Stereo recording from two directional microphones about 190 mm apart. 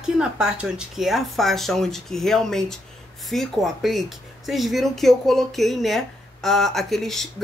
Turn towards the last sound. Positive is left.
turn(degrees=0)  # may be behind; listen again after turning